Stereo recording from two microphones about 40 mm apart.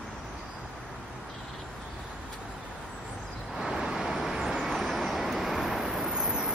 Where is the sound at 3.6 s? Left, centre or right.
Centre.